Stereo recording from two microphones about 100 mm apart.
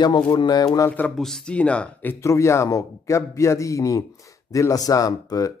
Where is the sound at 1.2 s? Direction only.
5° left (ahead or behind).